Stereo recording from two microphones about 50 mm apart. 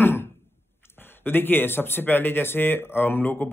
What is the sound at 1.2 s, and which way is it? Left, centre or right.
Speech, left.